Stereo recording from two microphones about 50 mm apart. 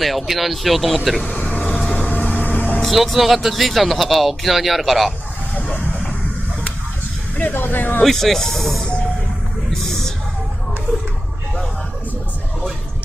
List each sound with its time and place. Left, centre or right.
0.0 s speech: centre
1.9 s vehicle: left
2.8 s speech: centre
7.3 s speech: left
8.0 s speech: centre
8.8 s music: left
9.7 s a sound: centre